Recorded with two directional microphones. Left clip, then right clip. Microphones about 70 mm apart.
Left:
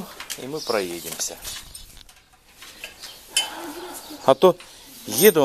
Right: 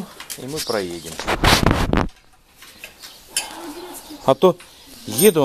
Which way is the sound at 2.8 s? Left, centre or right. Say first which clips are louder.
Even; centre.